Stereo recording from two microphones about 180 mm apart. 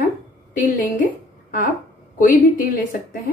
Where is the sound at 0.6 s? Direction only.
45° left (ahead or behind).